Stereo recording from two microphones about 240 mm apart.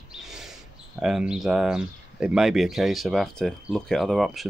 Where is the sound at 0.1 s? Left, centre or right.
Centre.